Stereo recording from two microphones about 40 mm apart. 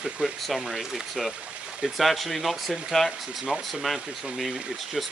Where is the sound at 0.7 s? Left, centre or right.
Centre.